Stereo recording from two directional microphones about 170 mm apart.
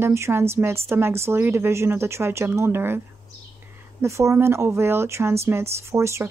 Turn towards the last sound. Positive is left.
turn(degrees=-15)  # may be behind; listen again after turning